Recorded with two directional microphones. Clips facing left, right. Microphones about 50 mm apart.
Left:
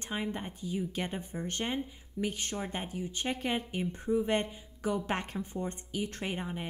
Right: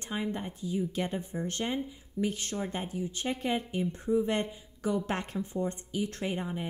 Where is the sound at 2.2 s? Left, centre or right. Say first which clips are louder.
Right 2 dB; left.